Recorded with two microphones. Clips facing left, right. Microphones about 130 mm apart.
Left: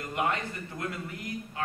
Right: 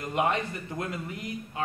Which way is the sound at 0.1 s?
20° right (ahead or behind).